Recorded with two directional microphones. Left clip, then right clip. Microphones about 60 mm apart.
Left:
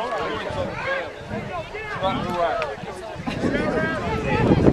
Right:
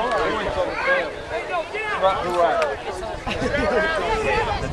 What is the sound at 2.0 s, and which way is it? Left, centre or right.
Run, left.